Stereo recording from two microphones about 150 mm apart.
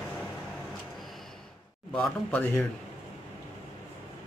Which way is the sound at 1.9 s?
10° left (ahead or behind).